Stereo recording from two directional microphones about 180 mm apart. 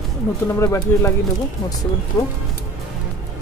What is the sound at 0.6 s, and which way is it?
Speech, 15° left (ahead or behind).